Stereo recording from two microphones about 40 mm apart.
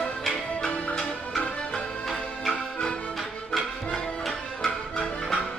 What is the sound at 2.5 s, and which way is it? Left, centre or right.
Music, centre.